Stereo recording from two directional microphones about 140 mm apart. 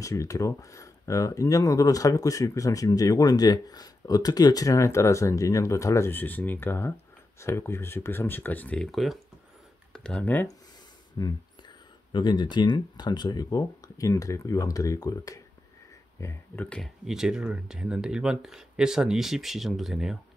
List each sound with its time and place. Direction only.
0.0 s speech: 20° left (ahead or behind)
11.2 s speech: 25° left (ahead or behind)
16.6 s speech: 5° left (ahead or behind)
17.0 s speech: 5° right (ahead or behind)